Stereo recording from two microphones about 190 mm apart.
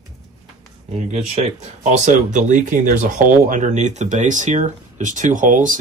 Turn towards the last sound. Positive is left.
turn(degrees=-45)  # may be behind; listen again after turning